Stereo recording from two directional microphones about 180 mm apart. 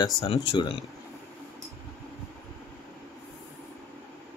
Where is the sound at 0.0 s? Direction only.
20° left (ahead or behind).